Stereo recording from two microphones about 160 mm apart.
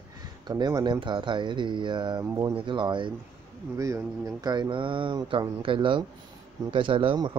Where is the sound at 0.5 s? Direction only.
25° right (ahead or behind).